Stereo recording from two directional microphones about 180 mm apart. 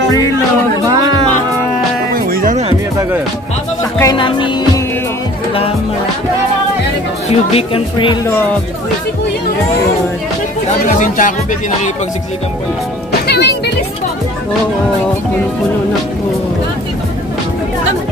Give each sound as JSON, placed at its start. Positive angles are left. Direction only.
{"t": 2.1, "sound": "music", "side_deg": -50}
{"t": 4.0, "sound": "music", "side_deg": 25}
{"t": 7.2, "sound": "speech", "side_deg": 30}
{"t": 10.8, "sound": "speech", "side_deg": 45}
{"t": 13.3, "sound": "speech", "side_deg": 65}